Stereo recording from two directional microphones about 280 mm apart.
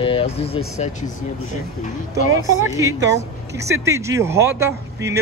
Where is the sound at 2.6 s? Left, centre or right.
Centre.